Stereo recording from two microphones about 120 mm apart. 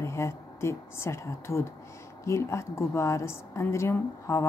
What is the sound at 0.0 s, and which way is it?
A woman's voice, 25° left (ahead or behind).